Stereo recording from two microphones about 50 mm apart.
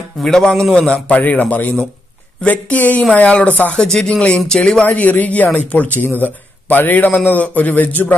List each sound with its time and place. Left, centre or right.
0.2 s a man's voice: centre; by 3.7 s left
3.7 s speech: centre
4.6 s a man's voice: left